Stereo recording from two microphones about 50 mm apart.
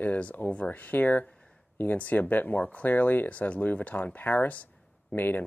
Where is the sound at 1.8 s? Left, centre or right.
Left.